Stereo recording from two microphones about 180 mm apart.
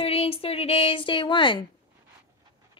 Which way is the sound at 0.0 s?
30° left (ahead or behind).